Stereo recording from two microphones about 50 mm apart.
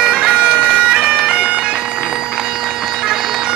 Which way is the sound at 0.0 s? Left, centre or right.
Centre.